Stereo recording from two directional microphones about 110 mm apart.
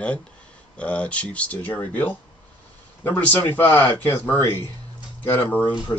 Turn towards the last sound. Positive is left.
turn(degrees=15)  # may be behind; listen again after turning